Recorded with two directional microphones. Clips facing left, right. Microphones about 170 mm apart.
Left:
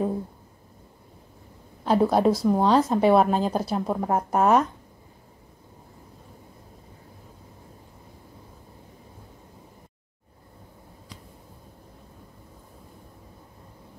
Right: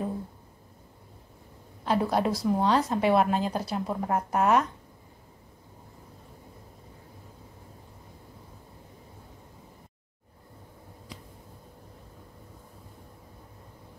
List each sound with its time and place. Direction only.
1.9 s a woman's voice: 40° left (ahead or behind)